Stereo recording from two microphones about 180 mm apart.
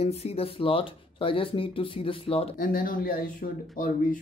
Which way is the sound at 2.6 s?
50° left (ahead or behind).